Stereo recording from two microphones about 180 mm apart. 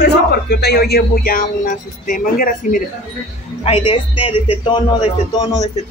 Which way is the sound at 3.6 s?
30° left (ahead or behind).